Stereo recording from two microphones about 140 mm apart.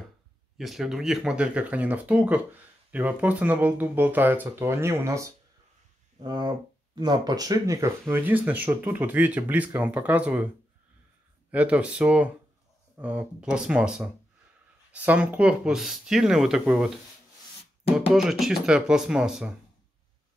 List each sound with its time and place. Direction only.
0.6 s speech: centre (ahead or behind)
11.5 s speech: 10° right (ahead or behind)
18.4 s speech: 5° right (ahead or behind)